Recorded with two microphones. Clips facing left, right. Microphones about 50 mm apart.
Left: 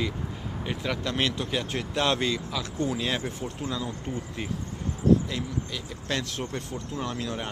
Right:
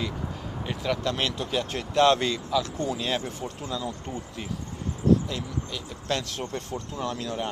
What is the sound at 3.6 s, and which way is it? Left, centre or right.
Speech, centre.